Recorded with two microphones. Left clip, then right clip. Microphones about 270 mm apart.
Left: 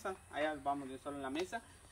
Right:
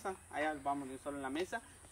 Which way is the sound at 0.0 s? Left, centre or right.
Centre.